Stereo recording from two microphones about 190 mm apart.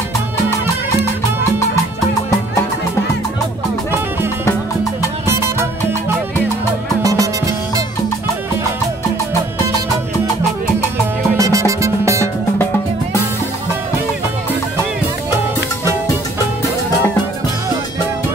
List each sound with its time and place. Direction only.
5.2 s music: 15° right (ahead or behind)
7.0 s music: 20° right (ahead or behind)
11.3 s music: 15° right (ahead or behind)